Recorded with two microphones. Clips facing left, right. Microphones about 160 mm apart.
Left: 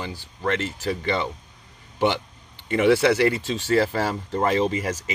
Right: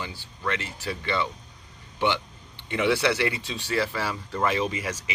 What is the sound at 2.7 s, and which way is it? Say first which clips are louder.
Speech: left 6 dB; 45° left (ahead or behind).